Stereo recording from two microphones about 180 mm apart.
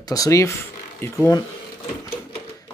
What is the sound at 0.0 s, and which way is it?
Speech, 20° left (ahead or behind).